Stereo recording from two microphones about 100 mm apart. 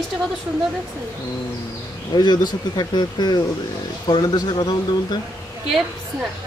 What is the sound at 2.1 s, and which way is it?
Speech, 45° left (ahead or behind).